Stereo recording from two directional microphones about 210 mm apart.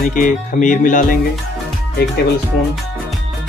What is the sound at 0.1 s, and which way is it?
Speech, 40° left (ahead or behind).